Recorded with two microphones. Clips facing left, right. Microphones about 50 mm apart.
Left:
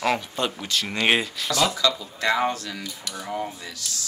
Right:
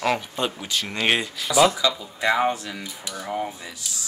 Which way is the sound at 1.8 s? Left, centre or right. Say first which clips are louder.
Even; centre.